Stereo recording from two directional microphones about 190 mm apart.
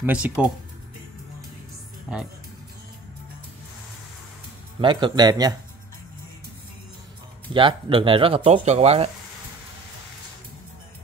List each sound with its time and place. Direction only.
0.0 s speech: 5° right (ahead or behind)
2.1 s speech: centre (ahead or behind)
4.7 s speech: 25° right (ahead or behind)
7.5 s speech: 25° right (ahead or behind)